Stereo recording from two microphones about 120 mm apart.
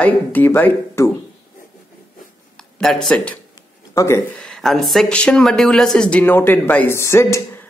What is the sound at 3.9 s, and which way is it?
Speech, 25° left (ahead or behind).